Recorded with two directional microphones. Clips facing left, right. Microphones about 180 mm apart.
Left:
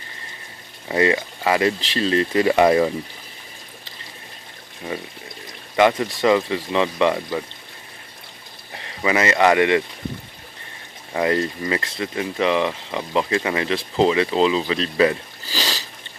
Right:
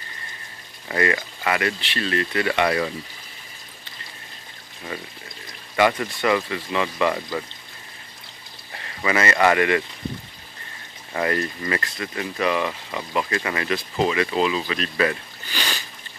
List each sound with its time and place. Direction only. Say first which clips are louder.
0.8 s speech: left 4 dB; 20° left (ahead or behind)
5.8 s speech: left 3 dB; 20° left (ahead or behind)
8.7 s speech: left 2 dB; 15° left (ahead or behind)
11.1 s speech: left 4 dB; 15° left (ahead or behind)